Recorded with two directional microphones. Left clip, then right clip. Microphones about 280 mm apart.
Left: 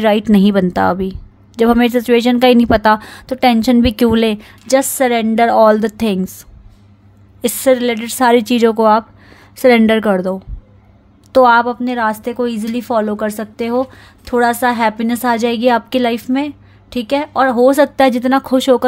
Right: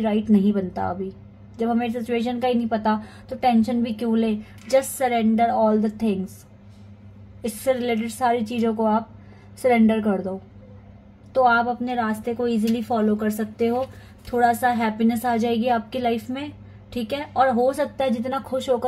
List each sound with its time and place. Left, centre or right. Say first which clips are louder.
0.0 s a woman's voice: left 10 dB; left
7.4 s a woman's voice: left 10 dB; left
11.4 s a woman's voice: left 6 dB; left
18.5 s speech: left 9 dB; left